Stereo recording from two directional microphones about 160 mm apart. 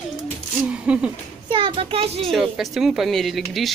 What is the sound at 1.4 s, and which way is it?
Speech, 30° right (ahead or behind).